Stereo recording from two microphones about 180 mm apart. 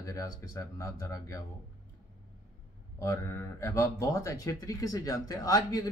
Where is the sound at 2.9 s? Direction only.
15° left (ahead or behind).